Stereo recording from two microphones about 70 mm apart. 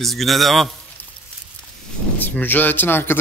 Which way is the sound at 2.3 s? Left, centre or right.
Left.